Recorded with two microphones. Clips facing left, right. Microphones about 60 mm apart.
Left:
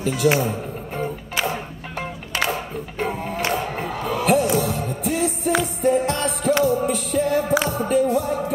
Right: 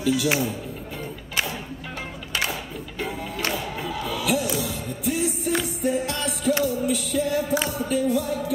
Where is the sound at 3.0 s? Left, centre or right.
Left.